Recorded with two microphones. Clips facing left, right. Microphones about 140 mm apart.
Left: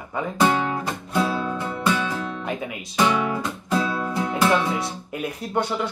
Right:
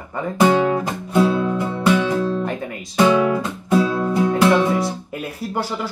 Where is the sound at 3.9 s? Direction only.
20° right (ahead or behind).